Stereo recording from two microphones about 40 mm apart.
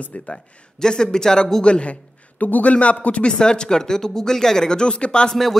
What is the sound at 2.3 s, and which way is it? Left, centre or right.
Speech, left.